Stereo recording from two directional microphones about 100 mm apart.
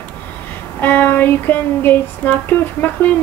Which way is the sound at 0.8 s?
20° left (ahead or behind).